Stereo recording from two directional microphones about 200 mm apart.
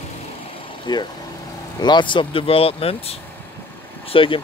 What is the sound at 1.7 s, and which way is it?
Speech, 20° left (ahead or behind).